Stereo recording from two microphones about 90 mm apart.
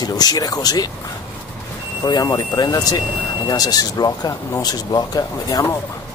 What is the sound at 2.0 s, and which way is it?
Speech, 45° left (ahead or behind).